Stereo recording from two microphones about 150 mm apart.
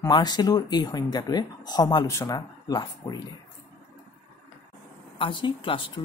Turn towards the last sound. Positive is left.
turn(degrees=35)  # may be behind; listen again after turning